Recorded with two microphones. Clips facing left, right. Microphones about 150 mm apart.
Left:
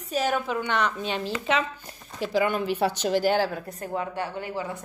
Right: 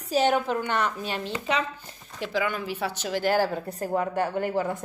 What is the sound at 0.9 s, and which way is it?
Speech, 25° left (ahead or behind).